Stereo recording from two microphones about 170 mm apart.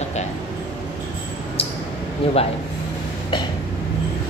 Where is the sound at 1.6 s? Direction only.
35° left (ahead or behind).